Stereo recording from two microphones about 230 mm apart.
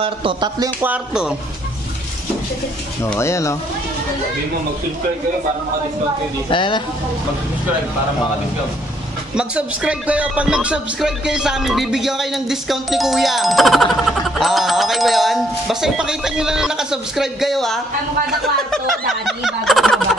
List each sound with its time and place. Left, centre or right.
0.0 s speech: right
0.8 s speech: centre
3.1 s speech: centre
6.5 s speech: centre
9.3 s speech: centre
19.2 s a sound: centre